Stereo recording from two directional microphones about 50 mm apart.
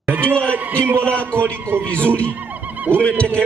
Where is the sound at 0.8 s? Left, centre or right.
Right.